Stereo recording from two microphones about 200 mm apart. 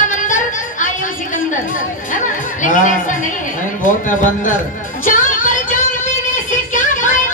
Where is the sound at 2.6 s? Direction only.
40° left (ahead or behind).